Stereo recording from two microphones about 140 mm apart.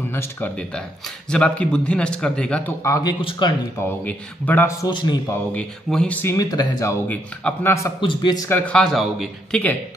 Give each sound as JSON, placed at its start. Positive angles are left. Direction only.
{"t": 0.1, "sound": "a man's voice", "side_deg": 15}
{"t": 2.8, "sound": "speech", "side_deg": 25}
{"t": 4.0, "sound": "a man's voice", "side_deg": 10}
{"t": 4.6, "sound": "speech", "side_deg": 25}
{"t": 5.5, "sound": "a man's voice", "side_deg": 5}
{"t": 6.3, "sound": "speech", "side_deg": 25}
{"t": 8.0, "sound": "speech", "side_deg": 30}
{"t": 8.5, "sound": "a man's voice", "side_deg": 10}